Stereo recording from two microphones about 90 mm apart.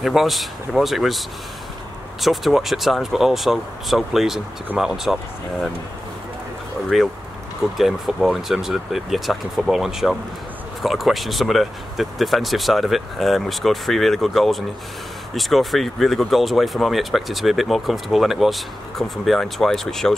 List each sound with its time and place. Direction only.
0.0 s speech: centre (ahead or behind)
2.2 s speech: centre (ahead or behind)
6.9 s speech: centre (ahead or behind)